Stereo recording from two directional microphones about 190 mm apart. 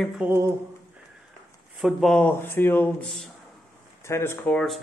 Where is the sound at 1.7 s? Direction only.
Centre (ahead or behind).